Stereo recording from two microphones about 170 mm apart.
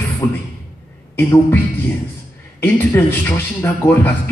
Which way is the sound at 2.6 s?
15° left (ahead or behind).